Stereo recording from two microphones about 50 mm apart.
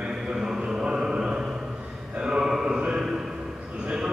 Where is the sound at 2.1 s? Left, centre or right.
Centre.